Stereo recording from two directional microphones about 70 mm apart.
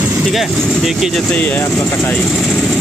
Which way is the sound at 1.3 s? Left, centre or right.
Centre.